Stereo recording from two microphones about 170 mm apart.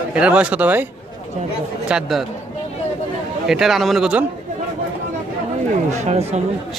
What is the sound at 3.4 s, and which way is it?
Speech, centre (ahead or behind).